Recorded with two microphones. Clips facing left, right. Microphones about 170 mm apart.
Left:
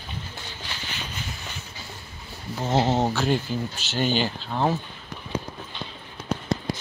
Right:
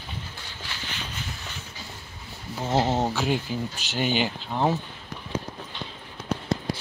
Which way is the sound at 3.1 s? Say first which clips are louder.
Left 2 dB; 10° right (ahead or behind).